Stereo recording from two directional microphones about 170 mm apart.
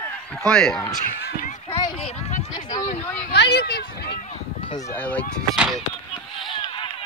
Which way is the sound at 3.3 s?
75° left (ahead or behind).